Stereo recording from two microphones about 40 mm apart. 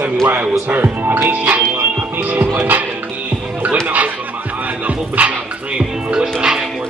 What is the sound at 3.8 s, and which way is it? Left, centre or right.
Music, right.